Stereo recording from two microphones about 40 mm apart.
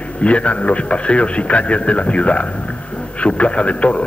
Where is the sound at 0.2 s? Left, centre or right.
Left.